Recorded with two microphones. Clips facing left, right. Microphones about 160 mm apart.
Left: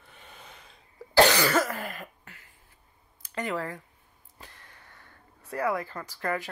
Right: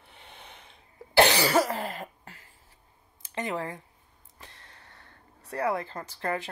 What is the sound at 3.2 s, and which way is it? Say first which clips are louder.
Speech: even; 20° right (ahead or behind).